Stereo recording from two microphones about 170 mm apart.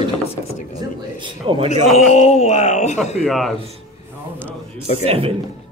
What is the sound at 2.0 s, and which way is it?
Speech, 40° left (ahead or behind).